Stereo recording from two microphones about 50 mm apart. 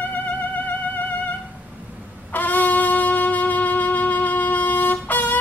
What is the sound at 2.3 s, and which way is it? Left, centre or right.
Wind instrument, left.